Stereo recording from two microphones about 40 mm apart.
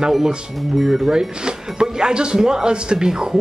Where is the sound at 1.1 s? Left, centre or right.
Centre.